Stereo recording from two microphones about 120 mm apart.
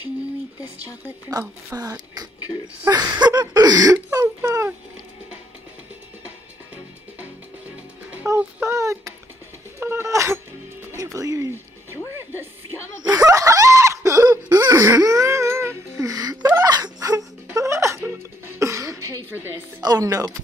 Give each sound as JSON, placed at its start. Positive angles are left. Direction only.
{"t": 1.3, "sound": "speech", "side_deg": -35}
{"t": 2.9, "sound": "a sound", "side_deg": -35}
{"t": 7.2, "sound": "music", "side_deg": -10}
{"t": 8.6, "sound": "a sound", "side_deg": -25}
{"t": 11.0, "sound": "music", "side_deg": -30}
{"t": 12.1, "sound": "a sound", "side_deg": -20}
{"t": 13.0, "sound": "snicker", "side_deg": -30}
{"t": 16.4, "sound": "wail", "side_deg": -30}
{"t": 17.6, "sound": "music", "side_deg": -25}
{"t": 18.6, "sound": "cough", "side_deg": -25}
{"t": 19.8, "sound": "speech", "side_deg": -30}